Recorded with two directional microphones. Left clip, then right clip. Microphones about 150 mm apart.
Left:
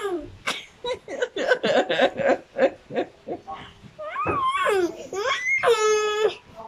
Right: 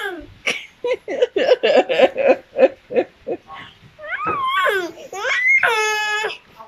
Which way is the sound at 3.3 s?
5° right (ahead or behind).